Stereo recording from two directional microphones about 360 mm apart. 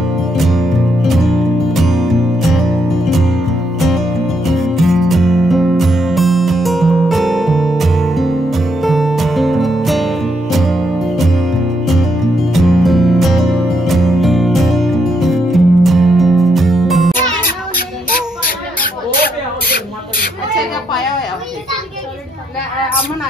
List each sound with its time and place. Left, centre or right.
0.4 s music: centre
4.5 s music: centre
18.8 s a sound: left